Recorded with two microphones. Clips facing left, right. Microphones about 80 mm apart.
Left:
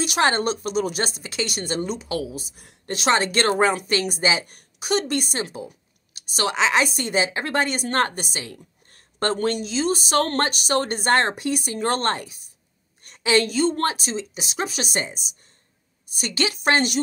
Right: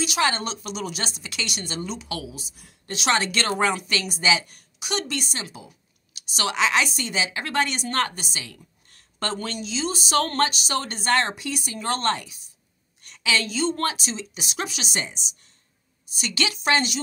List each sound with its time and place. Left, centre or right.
0.0 s speech: left
2.0 s a woman's voice: left
2.3 s speech: left
4.5 s a sound: left
4.8 s a woman's voice: left
7.0 s speech: left
7.2 s speech: left
8.1 s speech: left
8.4 s a sound: left
9.4 s speech: left
13.0 s a sound: left
13.7 s speech: left
16.2 s speech: left